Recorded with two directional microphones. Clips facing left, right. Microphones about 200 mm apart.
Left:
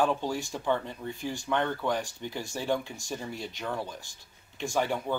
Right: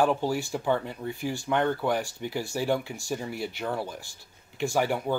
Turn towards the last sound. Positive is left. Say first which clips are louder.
# right 3 dB
turn(degrees=-10)  # may be behind; listen again after turning